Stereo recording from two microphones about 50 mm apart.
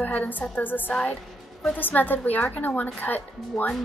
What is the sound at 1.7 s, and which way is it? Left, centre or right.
A woman's voice, left.